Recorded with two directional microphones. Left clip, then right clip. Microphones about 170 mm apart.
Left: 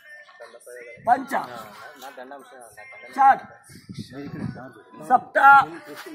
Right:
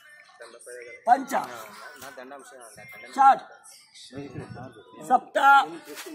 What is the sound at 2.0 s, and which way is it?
Speech, 60° right (ahead or behind).